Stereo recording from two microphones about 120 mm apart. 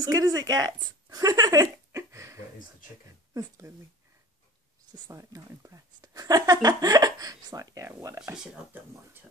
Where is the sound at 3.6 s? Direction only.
30° right (ahead or behind).